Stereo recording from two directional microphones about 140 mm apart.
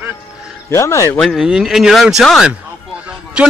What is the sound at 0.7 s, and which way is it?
Speech, 20° left (ahead or behind).